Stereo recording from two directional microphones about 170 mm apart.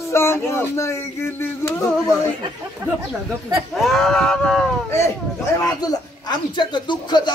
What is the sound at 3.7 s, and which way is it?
Speech, centre (ahead or behind).